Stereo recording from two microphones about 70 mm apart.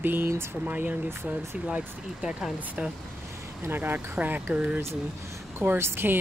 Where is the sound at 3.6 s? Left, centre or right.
Right.